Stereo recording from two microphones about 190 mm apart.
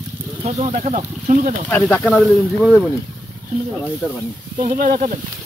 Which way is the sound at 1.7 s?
10° left (ahead or behind).